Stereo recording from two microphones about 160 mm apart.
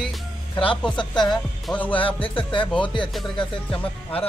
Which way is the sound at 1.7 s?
10° left (ahead or behind).